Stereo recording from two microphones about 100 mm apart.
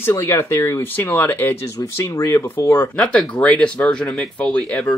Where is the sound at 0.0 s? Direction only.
25° left (ahead or behind).